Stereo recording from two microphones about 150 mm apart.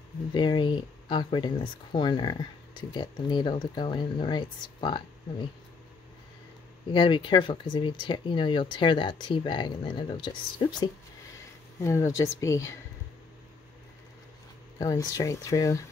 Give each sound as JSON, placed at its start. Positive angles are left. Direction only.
{"t": 0.3, "sound": "speech", "side_deg": 30}
{"t": 6.9, "sound": "speech", "side_deg": 35}
{"t": 11.8, "sound": "speech", "side_deg": 20}
{"t": 14.8, "sound": "speech", "side_deg": 25}